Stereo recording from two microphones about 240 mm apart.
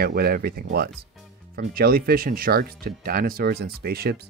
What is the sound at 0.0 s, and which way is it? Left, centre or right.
Speech, right.